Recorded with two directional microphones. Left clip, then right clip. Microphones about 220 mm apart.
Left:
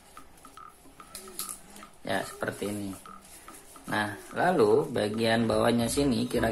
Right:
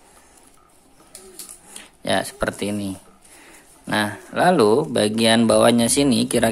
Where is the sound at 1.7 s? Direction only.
45° right (ahead or behind).